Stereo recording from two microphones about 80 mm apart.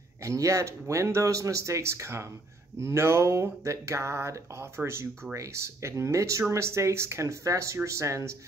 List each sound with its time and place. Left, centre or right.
0.2 s speech: right